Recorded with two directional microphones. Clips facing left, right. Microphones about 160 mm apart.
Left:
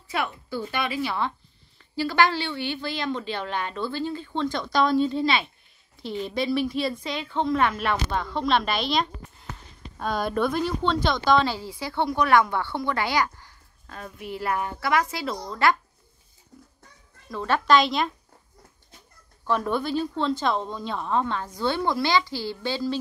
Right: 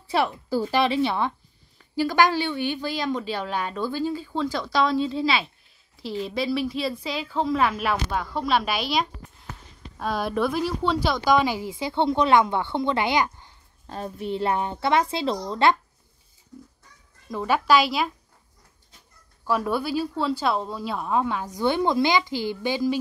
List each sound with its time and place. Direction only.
0.1 s a woman's voice: 35° right (ahead or behind)
17.3 s speech: 15° right (ahead or behind)
19.4 s speech: 5° right (ahead or behind)